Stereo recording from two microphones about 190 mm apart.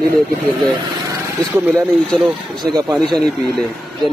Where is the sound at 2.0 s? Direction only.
Centre (ahead or behind).